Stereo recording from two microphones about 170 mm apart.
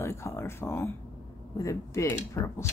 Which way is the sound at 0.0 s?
15° left (ahead or behind).